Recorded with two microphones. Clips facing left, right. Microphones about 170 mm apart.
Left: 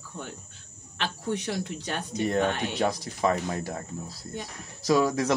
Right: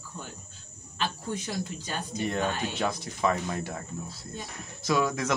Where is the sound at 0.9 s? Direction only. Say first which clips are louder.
Left 2 dB; 70° left (ahead or behind).